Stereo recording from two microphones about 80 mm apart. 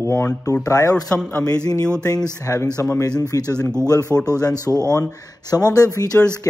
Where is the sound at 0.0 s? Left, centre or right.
Left.